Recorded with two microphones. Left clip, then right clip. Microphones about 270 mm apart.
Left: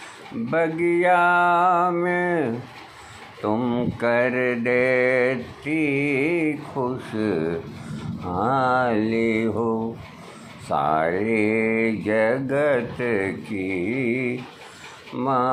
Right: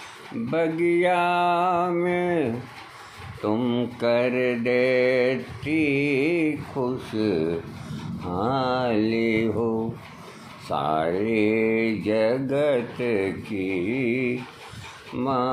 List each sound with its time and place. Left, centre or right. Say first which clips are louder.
0.5 s speech: left 1 dB; centre
5.7 s mantra: even; left
6.8 s speech: even; centre